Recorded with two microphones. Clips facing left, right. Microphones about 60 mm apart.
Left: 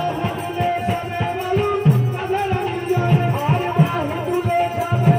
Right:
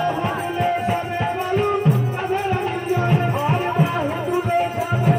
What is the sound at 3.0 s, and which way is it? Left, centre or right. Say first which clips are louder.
Music: left 1 dB; centre.